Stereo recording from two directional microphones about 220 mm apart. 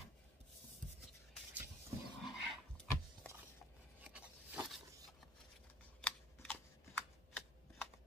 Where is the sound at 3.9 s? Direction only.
5° right (ahead or behind).